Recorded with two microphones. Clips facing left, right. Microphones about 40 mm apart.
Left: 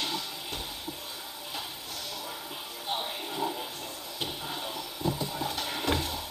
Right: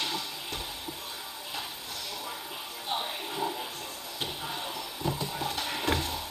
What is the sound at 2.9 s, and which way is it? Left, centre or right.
Music, centre.